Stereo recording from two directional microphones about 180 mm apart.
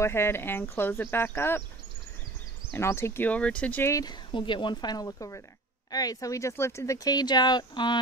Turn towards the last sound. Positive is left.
turn(degrees=25)  # may be behind; listen again after turning